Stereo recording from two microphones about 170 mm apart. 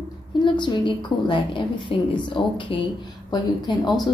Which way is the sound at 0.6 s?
25° left (ahead or behind).